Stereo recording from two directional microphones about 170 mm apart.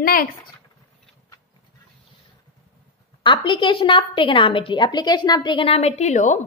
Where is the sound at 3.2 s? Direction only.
30° left (ahead or behind).